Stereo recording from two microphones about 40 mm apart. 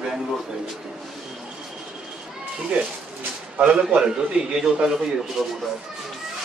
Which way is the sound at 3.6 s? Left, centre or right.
Right.